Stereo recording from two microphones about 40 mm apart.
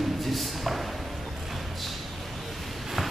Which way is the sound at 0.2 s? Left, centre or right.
Centre.